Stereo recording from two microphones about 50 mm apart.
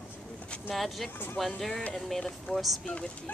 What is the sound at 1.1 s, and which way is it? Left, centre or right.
Speech, left.